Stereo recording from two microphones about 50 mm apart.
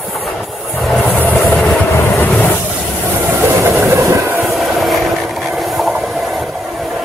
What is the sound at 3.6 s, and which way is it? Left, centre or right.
Train, right.